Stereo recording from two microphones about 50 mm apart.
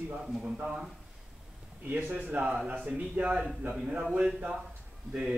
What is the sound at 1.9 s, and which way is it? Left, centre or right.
A man's voice, right.